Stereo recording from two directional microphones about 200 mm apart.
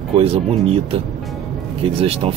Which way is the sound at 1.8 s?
30° right (ahead or behind).